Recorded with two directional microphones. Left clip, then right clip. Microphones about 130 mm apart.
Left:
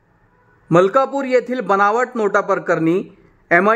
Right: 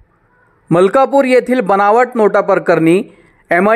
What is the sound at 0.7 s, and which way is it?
A man's voice, 35° right (ahead or behind).